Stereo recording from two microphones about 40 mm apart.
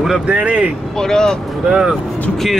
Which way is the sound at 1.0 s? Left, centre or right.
Centre.